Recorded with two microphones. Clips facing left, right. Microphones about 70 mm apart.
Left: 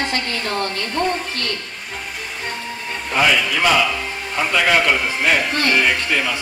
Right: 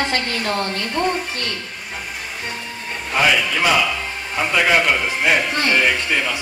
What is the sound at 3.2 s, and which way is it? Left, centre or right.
A man's voice, centre.